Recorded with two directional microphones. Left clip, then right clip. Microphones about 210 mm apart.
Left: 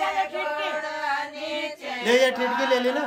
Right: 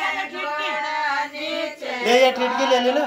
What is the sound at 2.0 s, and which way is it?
A man's voice, 30° left (ahead or behind).